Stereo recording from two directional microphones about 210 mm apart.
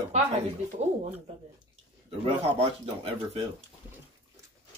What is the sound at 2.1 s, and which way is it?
Speech, 25° right (ahead or behind).